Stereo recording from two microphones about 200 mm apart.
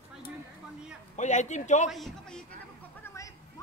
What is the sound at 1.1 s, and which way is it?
Speech, 35° left (ahead or behind).